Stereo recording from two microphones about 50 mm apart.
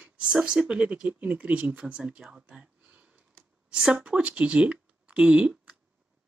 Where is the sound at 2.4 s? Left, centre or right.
Right.